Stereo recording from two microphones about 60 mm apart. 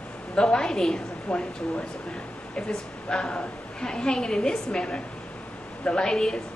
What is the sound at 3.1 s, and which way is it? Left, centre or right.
A woman's voice, centre.